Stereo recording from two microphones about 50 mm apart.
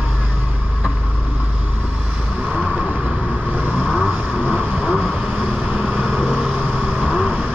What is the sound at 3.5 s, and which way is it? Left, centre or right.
Vehicle, centre.